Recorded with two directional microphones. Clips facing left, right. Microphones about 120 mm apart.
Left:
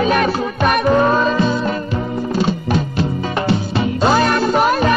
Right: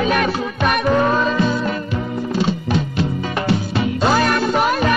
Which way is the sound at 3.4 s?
30° left (ahead or behind).